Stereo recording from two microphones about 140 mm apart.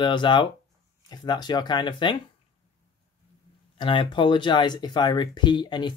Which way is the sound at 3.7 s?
35° left (ahead or behind).